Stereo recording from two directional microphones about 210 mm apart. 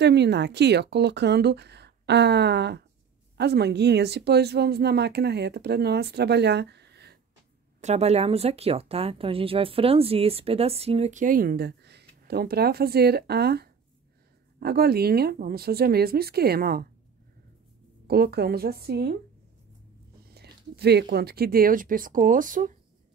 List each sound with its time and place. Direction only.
0.0 s speech: 55° right (ahead or behind)
7.8 s speech: 30° right (ahead or behind); by 16.8 s 45° right (ahead or behind)
18.0 s speech: 50° right (ahead or behind)
20.2 s speech: 50° right (ahead or behind)